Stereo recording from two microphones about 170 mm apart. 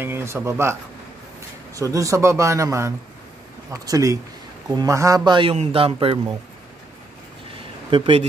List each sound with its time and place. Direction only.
0.0 s speech: 15° right (ahead or behind)
2.0 s speech: 15° right (ahead or behind)
7.9 s speech: 35° right (ahead or behind)